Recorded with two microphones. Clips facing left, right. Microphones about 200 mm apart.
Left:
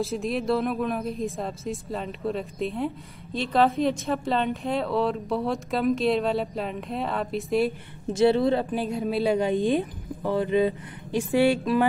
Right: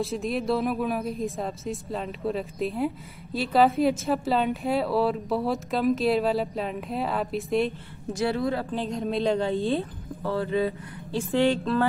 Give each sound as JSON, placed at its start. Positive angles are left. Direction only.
{"t": 0.0, "sound": "a woman's voice", "side_deg": 0}
{"t": 8.1, "sound": "speech", "side_deg": 25}
{"t": 8.7, "sound": "speech", "side_deg": 5}